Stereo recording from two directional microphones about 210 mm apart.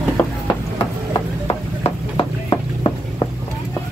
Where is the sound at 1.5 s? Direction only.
25° left (ahead or behind).